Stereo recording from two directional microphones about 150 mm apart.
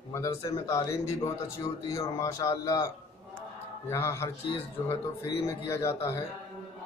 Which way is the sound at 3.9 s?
15° left (ahead or behind).